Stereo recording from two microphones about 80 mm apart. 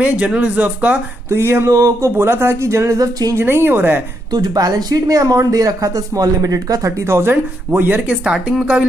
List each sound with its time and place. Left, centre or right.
0.0 s speech: centre
1.3 s speech: right
1.7 s speech: right
4.3 s speech: right
7.1 s speech: right